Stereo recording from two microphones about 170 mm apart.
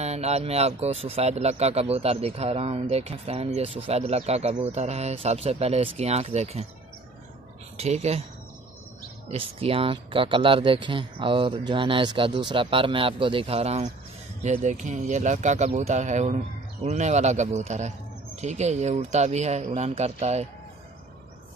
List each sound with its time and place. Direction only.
0.0 s a man's voice: 40° right (ahead or behind)
7.7 s a man's voice: 40° right (ahead or behind)
9.3 s a man's voice: 35° right (ahead or behind)